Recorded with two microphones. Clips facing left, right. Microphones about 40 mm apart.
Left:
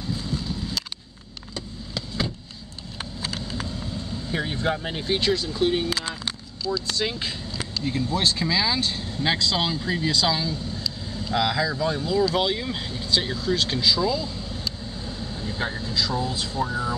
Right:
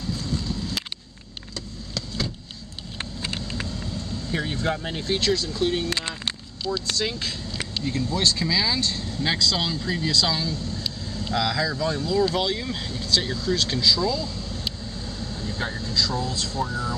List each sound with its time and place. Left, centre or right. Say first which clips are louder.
0.0 s boat: even; centre
1.5 s vehicle: left 1 dB; centre
3.6 s speech: even; centre
6.7 s speech: left 1 dB; centre
7.0 s speech: even; centre